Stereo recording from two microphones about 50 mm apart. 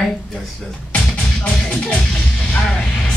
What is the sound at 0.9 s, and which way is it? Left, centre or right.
Music, left.